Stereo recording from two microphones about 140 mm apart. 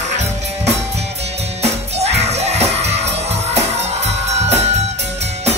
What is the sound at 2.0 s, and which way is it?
Music, 50° right (ahead or behind).